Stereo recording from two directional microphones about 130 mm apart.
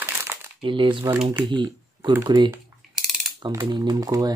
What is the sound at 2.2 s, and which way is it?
Speech, 35° right (ahead or behind).